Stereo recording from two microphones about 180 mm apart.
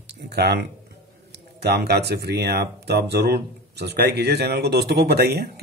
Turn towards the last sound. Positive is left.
turn(degrees=-60)  # may be behind; listen again after turning